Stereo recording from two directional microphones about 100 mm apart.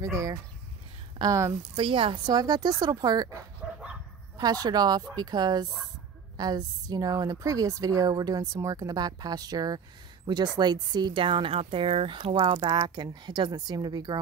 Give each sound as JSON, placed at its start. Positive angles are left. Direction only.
{"t": 0.0, "sound": "a woman's voice", "side_deg": -30}
{"t": 1.8, "sound": "speech", "side_deg": -60}
{"t": 4.4, "sound": "a woman's voice", "side_deg": -40}